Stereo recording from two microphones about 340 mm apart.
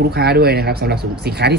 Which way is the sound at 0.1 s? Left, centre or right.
Right.